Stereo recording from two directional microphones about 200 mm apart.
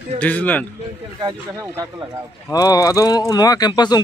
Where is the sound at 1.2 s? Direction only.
20° right (ahead or behind).